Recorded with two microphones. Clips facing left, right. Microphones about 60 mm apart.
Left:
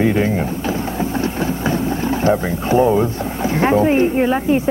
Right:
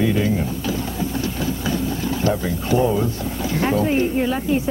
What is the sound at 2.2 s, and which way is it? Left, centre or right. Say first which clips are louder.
A woman's voice: left 5 dB; left.